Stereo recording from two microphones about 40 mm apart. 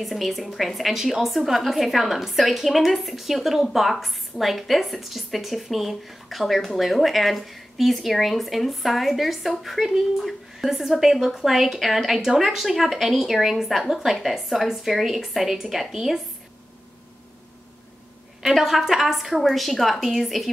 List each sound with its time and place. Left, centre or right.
0.0 s a woman's voice: centre
18.4 s a woman's voice: centre